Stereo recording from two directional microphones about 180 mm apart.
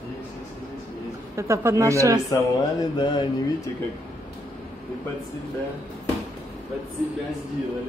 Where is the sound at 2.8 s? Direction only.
25° left (ahead or behind).